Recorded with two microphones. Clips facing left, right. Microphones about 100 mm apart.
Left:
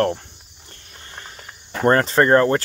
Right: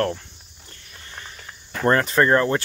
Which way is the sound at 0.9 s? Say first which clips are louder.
Left 1 dB; 35° left (ahead or behind).